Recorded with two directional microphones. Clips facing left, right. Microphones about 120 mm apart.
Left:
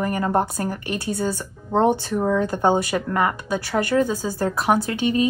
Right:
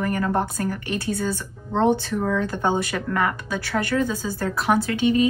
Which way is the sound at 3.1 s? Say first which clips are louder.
Left 1 dB; 15° left (ahead or behind).